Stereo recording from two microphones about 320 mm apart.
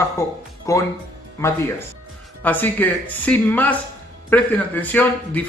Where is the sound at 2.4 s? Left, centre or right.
Centre.